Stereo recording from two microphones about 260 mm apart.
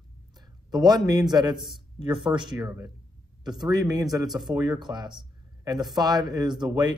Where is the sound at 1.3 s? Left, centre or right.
Centre.